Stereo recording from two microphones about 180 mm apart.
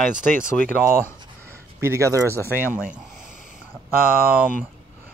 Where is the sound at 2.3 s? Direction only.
15° left (ahead or behind).